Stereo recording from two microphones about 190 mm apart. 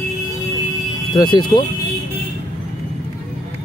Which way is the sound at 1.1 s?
20° left (ahead or behind).